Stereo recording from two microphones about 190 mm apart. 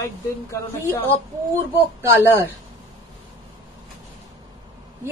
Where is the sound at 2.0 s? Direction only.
10° right (ahead or behind).